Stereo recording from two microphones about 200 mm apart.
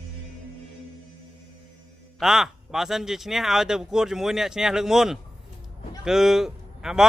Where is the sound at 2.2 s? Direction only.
Centre (ahead or behind).